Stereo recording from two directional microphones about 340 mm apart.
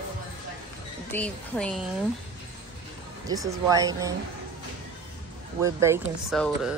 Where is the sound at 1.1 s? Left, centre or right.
Centre.